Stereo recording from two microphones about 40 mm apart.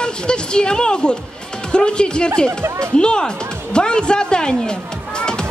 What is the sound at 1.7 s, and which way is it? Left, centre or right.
Music, left.